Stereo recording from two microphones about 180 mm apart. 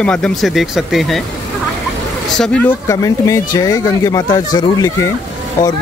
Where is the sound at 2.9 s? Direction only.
15° left (ahead or behind).